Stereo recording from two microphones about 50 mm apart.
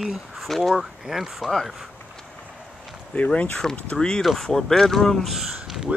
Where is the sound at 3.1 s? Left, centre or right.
Left; by 5.4 s centre.